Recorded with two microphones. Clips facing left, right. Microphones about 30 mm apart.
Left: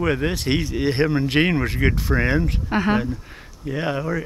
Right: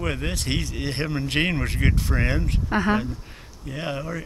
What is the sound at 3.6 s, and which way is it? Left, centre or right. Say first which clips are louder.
Speech: left 6 dB; centre.